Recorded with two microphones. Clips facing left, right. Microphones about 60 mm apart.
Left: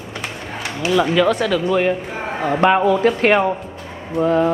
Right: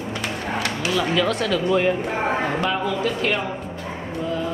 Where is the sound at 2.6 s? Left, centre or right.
Left.